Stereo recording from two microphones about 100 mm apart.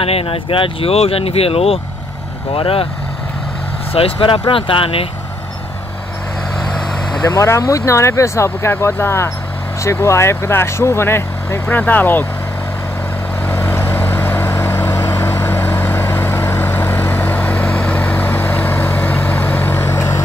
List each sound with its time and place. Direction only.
0.0 s speech: 75° left (ahead or behind)
3.9 s speech: 65° left (ahead or behind)
7.3 s speech: 30° left (ahead or behind)
13.5 s vehicle: 25° left (ahead or behind)